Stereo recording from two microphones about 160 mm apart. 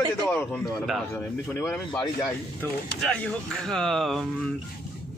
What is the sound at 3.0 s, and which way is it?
Speech, 5° left (ahead or behind).